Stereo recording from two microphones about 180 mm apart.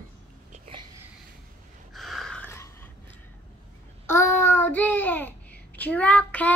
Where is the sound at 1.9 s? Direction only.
Centre (ahead or behind).